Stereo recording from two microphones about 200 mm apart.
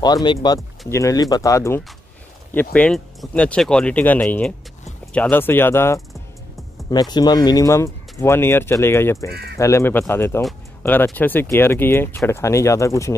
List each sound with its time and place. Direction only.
0.0 s speech: 20° left (ahead or behind)